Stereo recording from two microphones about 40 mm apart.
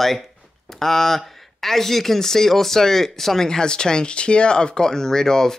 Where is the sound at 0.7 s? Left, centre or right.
Centre.